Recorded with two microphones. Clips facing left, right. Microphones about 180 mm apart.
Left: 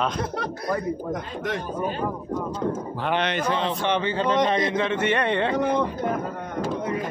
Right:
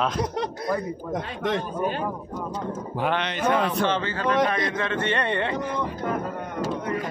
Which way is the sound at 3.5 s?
25° left (ahead or behind).